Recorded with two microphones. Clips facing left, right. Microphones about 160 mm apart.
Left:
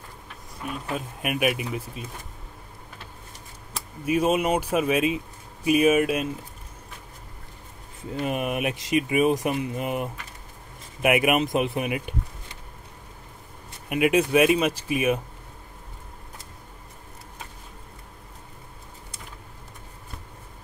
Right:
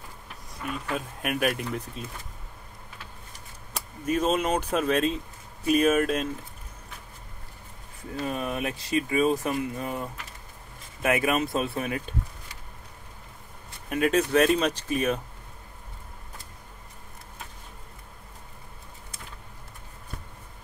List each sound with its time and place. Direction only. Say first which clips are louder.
0.9 s speech: left 2 dB; 5° left (ahead or behind)
4.0 s speech: left 3 dB; 10° left (ahead or behind)
8.1 s speech: left 3 dB; 20° left (ahead or behind)
13.8 s speech: left 3 dB; 10° left (ahead or behind)